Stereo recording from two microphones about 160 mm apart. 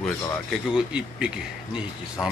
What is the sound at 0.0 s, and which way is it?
Speech, centre (ahead or behind).